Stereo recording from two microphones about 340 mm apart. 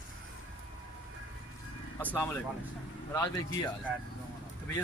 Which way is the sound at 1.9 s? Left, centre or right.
Centre.